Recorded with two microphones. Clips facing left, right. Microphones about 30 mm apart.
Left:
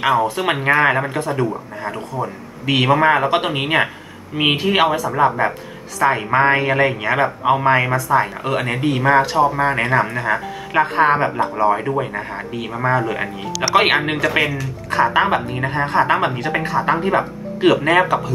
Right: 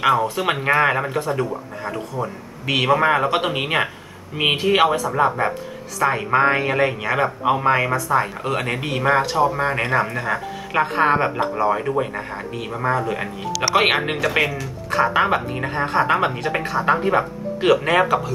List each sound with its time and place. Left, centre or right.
0.2 s speech: centre